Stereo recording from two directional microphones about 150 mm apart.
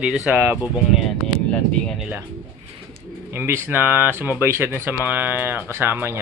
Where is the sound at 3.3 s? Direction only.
15° right (ahead or behind).